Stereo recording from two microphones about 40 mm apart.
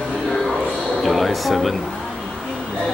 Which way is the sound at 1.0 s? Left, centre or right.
Centre.